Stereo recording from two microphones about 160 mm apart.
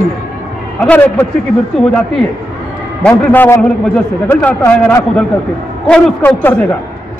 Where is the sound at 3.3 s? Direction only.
15° left (ahead or behind).